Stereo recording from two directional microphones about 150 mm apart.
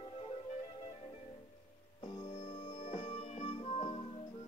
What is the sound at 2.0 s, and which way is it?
Music, 35° left (ahead or behind).